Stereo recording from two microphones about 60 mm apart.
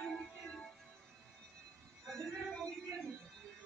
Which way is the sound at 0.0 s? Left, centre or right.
Centre.